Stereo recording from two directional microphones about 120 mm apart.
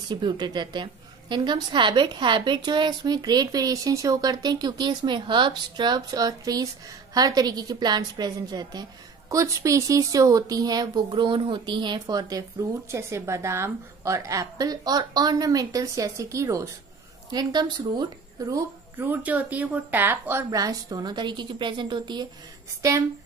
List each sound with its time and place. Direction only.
0.1 s a woman's voice: 35° right (ahead or behind)
18.9 s speech: 15° right (ahead or behind)
20.5 s a woman's voice: 30° right (ahead or behind)
22.8 s a woman's voice: 25° right (ahead or behind)